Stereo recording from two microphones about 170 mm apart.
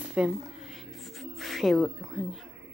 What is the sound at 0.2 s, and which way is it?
Speech, 5° right (ahead or behind).